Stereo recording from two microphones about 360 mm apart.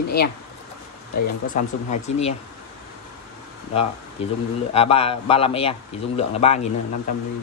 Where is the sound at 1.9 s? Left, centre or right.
Centre.